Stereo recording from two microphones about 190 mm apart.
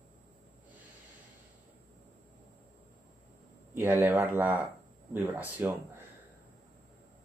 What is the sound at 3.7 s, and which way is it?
Speech, 10° right (ahead or behind).